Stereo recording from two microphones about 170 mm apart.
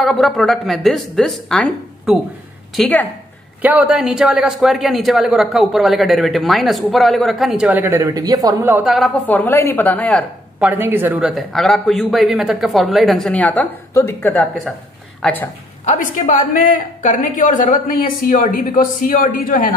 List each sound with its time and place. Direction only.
0.0 s a man's voice: centre (ahead or behind)
3.6 s a man's voice: 10° right (ahead or behind)
8.8 s a man's voice: centre (ahead or behind)
9.2 s a woman's voice: 10° left (ahead or behind)
10.6 s a man's voice: 10° right (ahead or behind); by 15.5 s 10° left (ahead or behind)
15.8 s a woman's voice: 50° left (ahead or behind)